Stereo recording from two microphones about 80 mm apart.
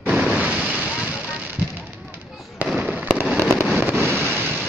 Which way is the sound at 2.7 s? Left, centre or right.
Centre.